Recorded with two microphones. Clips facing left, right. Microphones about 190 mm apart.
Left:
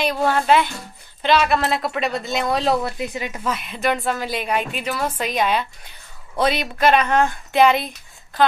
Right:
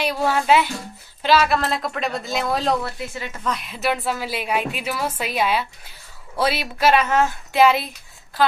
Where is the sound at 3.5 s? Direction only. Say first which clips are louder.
Left 1 dB; centre (ahead or behind).